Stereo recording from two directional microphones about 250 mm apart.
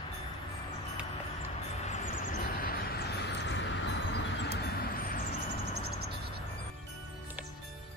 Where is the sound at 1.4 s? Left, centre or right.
Left.